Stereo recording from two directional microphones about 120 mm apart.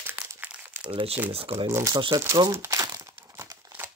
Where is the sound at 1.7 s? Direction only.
25° right (ahead or behind).